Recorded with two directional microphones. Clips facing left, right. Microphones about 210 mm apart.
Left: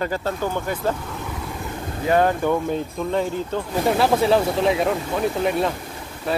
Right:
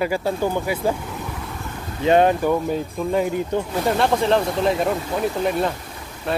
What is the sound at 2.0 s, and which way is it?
Speech, 20° right (ahead or behind).